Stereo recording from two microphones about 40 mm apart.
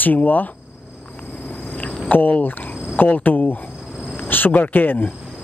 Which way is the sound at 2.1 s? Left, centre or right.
Left.